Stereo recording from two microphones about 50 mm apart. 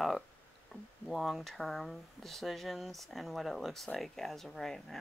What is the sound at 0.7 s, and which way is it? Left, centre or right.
Speech, centre.